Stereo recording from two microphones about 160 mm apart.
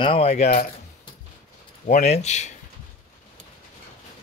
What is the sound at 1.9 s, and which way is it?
Speech, 45° left (ahead or behind).